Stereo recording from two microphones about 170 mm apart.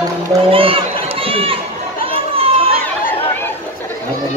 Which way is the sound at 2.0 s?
35° right (ahead or behind).